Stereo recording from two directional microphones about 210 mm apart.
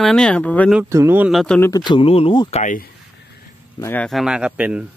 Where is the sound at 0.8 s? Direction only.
10° right (ahead or behind); by 2.6 s 25° left (ahead or behind).